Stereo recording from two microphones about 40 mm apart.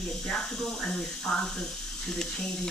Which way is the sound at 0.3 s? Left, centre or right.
Centre.